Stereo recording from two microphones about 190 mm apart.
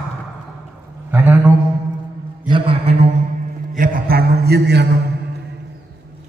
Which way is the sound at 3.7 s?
45° right (ahead or behind).